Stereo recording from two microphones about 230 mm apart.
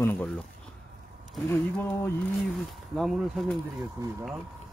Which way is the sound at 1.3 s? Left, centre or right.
Centre.